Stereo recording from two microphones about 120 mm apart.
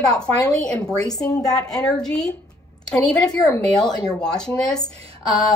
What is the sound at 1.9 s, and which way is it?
A woman's voice, 5° left (ahead or behind).